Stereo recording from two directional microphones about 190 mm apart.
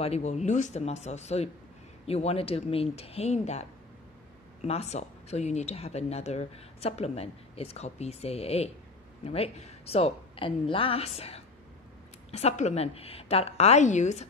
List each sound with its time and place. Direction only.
0.0 s speech: 35° left (ahead or behind)